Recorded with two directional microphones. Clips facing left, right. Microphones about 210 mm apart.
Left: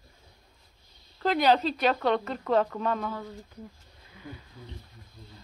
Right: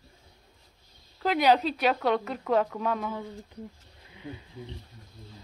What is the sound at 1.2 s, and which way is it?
Speech, 10° right (ahead or behind).